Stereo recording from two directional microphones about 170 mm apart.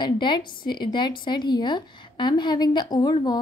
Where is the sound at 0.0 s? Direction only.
30° left (ahead or behind).